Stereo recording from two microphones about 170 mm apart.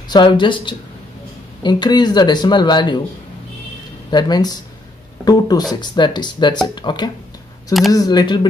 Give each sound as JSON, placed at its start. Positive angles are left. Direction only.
{"t": 0.1, "sound": "speech", "side_deg": 25}
{"t": 4.1, "sound": "speech", "side_deg": 25}